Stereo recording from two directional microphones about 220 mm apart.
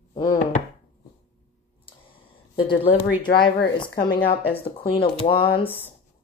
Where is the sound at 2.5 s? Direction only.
20° left (ahead or behind).